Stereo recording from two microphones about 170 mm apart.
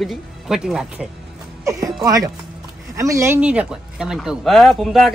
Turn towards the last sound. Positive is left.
turn(degrees=0)  # may be behind; listen again after turning